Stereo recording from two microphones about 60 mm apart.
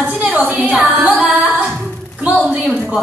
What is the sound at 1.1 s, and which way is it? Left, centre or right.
Speech, centre.